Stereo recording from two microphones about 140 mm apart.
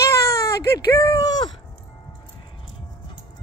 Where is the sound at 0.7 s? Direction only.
25° left (ahead or behind).